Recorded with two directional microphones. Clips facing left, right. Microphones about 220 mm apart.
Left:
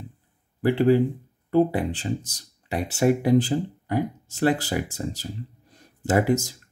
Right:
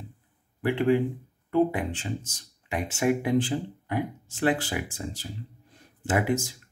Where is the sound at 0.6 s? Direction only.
35° left (ahead or behind).